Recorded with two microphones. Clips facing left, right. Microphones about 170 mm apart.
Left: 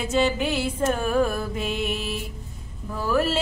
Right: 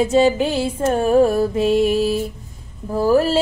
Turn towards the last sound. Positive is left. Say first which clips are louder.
# right 8 dB
turn(degrees=-35)  # may be behind; listen again after turning